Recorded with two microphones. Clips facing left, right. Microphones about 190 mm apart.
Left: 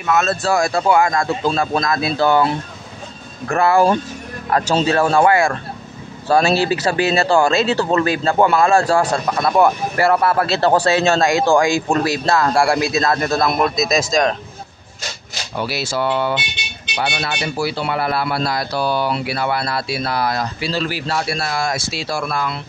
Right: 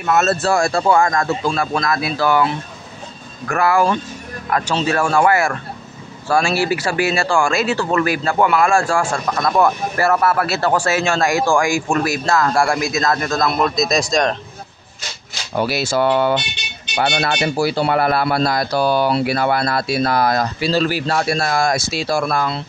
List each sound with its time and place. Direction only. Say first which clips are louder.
0.0 s speech: right 1 dB; 5° right (ahead or behind)
0.7 s a man's voice: even; 10° left (ahead or behind); by 8.8 s 25° left (ahead or behind)
9.2 s speech: left 1 dB; 10° left (ahead or behind)
10.2 s a man's voice: left 1 dB; 25° left (ahead or behind)
13.4 s speech: even; 10° left (ahead or behind)
15.5 s speech: right 4 dB; 50° right (ahead or behind)